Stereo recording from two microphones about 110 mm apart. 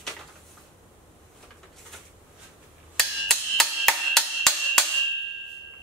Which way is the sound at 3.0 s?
5° left (ahead or behind).